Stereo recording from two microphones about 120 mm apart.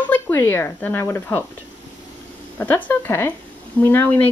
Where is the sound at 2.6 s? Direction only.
15° left (ahead or behind).